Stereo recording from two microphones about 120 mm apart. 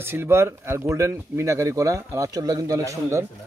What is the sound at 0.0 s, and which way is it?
Speech, 20° right (ahead or behind).